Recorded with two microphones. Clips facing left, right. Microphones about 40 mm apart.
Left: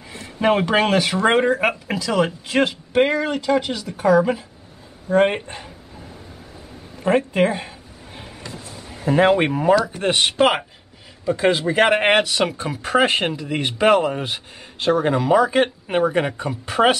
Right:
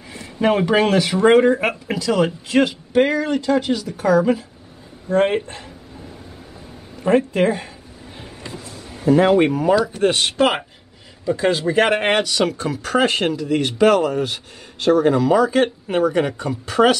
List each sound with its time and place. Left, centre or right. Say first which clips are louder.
0.4 s speech: right 1 dB; centre
3.3 s speech: right 2 dB; centre
7.0 s speech: right 1 dB; centre
8.5 s speech: right 2 dB; right
9.0 s speech: right 2 dB; left